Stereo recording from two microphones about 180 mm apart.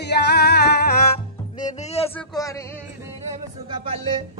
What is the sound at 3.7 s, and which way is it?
Music, 30° right (ahead or behind).